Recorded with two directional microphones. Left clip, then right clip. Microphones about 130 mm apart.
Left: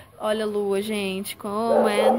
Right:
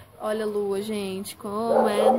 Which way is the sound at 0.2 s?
40° left (ahead or behind).